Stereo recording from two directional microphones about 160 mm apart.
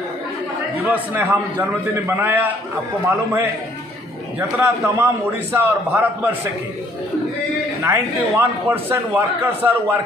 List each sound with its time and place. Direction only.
0.8 s a man's voice: 10° right (ahead or behind)
4.4 s a man's voice: 15° right (ahead or behind)
7.8 s a man's voice: 15° right (ahead or behind)